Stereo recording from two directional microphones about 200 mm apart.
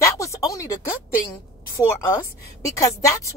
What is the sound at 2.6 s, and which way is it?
Speech, 15° left (ahead or behind).